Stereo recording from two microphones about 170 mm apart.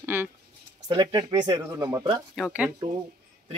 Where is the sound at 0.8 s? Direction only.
20° right (ahead or behind).